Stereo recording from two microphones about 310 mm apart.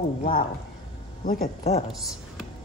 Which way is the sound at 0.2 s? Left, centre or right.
Left.